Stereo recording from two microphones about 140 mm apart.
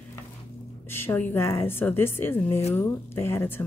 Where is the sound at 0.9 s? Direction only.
15° left (ahead or behind).